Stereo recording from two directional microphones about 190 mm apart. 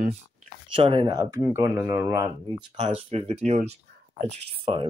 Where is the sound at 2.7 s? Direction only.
30° right (ahead or behind).